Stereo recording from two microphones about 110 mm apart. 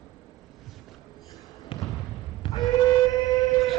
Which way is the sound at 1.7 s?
45° left (ahead or behind).